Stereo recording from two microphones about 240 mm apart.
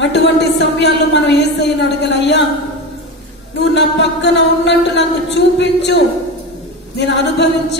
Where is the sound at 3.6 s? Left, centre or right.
Left.